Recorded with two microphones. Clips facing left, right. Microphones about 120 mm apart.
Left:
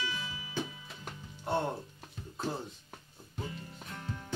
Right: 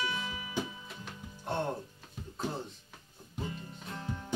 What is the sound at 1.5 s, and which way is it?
Speech, 5° left (ahead or behind).